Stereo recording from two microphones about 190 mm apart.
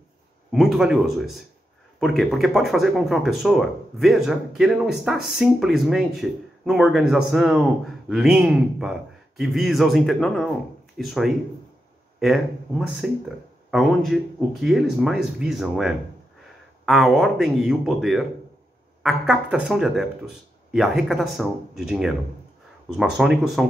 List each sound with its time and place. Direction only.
0.5 s speech: centre (ahead or behind)